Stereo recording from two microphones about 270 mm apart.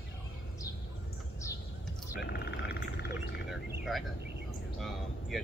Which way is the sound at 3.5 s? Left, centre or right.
Centre.